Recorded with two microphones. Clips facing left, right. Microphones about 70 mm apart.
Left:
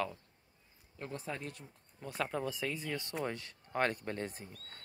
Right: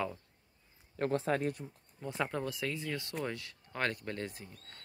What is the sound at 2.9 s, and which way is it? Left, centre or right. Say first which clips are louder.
Speech: even; left.